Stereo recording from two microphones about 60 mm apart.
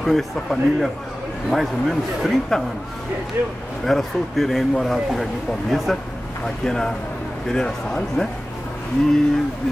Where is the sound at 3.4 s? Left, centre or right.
Right.